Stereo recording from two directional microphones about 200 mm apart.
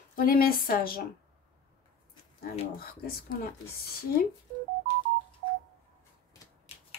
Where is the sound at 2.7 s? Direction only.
45° left (ahead or behind).